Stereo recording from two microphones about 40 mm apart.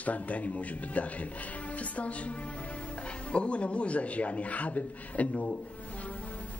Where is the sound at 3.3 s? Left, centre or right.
Left.